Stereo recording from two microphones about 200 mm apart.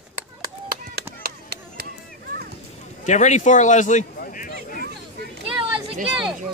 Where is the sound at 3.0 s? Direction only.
35° left (ahead or behind).